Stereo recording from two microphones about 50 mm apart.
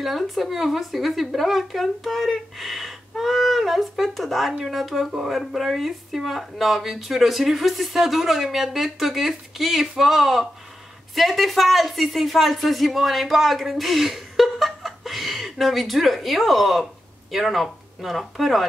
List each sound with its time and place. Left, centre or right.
0.0 s speech: centre